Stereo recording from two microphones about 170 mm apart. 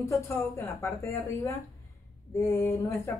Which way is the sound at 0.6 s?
15° left (ahead or behind).